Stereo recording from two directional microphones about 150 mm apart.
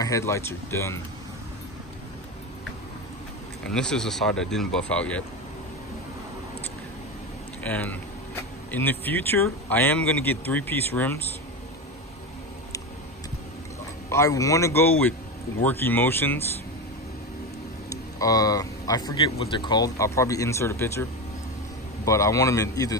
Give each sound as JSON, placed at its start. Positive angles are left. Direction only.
{"t": 0.0, "sound": "speech", "side_deg": 20}
{"t": 3.6, "sound": "speech", "side_deg": 5}
{"t": 7.6, "sound": "speech", "side_deg": 10}
{"t": 14.1, "sound": "speech", "side_deg": 20}
{"t": 17.8, "sound": "speech", "side_deg": 25}